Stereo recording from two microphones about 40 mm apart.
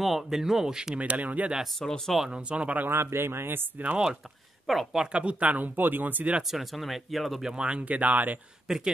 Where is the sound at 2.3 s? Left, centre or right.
Right.